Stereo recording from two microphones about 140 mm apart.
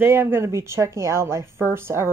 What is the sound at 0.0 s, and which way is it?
Speech, 15° right (ahead or behind).